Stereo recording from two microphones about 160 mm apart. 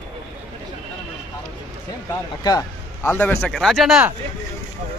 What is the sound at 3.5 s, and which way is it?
Speech, centre (ahead or behind).